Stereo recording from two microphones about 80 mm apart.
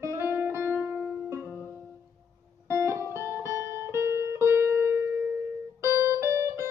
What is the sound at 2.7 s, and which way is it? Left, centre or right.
Music, right.